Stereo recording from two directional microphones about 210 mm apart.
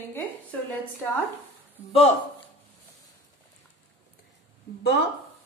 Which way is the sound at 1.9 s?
30° left (ahead or behind).